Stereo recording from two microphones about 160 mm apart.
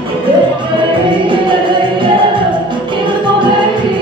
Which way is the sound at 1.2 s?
30° right (ahead or behind).